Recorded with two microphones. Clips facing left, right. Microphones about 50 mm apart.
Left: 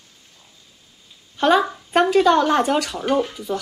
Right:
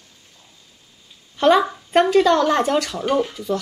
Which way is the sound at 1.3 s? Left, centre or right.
Centre.